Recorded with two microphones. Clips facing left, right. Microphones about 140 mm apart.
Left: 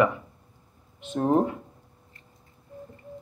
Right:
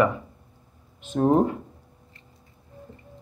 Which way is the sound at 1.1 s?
20° right (ahead or behind).